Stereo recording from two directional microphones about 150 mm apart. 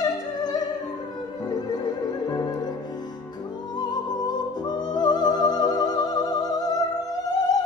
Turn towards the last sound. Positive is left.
turn(degrees=25)  # may be behind; listen again after turning